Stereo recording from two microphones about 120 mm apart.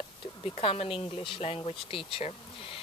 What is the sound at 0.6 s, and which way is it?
Speech, 50° left (ahead or behind).